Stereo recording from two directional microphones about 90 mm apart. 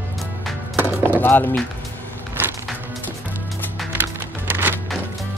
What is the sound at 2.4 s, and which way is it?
Music, 25° right (ahead or behind).